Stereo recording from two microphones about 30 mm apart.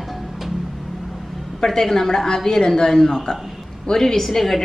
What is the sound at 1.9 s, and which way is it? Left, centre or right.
A woman's voice, centre.